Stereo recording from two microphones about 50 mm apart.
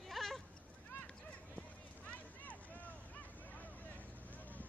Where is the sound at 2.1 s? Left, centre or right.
Left.